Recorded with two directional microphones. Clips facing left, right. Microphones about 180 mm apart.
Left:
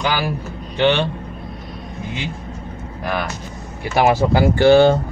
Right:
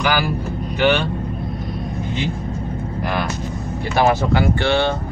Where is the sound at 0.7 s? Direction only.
25° left (ahead or behind).